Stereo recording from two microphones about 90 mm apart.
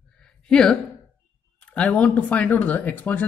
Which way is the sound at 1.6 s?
15° left (ahead or behind).